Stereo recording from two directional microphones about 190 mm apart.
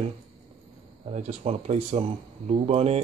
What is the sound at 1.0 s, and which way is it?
Speech, 35° right (ahead or behind).